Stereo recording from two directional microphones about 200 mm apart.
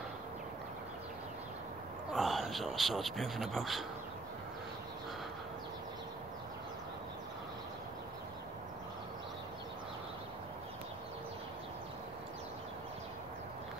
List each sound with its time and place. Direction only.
2.1 s speech: centre (ahead or behind)